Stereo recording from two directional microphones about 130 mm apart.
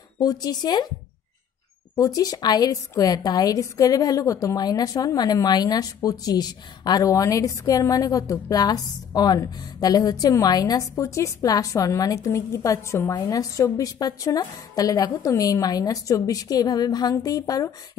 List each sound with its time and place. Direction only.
0.2 s speech: 30° left (ahead or behind)
2.0 s a woman's voice: 30° left (ahead or behind)